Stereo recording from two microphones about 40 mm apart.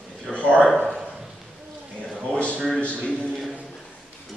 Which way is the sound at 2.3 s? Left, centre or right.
Left.